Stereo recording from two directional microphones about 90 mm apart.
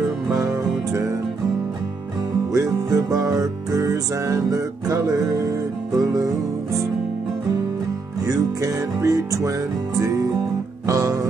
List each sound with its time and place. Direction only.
0.3 s music: 40° right (ahead or behind)
2.5 s music: 40° right (ahead or behind)
8.2 s music: 40° right (ahead or behind)